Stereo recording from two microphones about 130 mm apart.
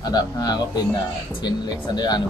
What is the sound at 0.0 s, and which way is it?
Speech, 30° left (ahead or behind).